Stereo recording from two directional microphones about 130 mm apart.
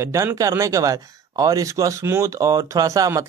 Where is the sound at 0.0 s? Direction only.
20° right (ahead or behind).